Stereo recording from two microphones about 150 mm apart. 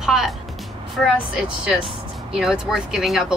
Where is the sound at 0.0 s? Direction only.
5° right (ahead or behind).